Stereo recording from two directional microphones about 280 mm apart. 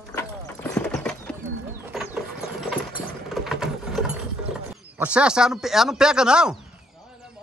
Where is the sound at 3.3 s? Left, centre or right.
Centre.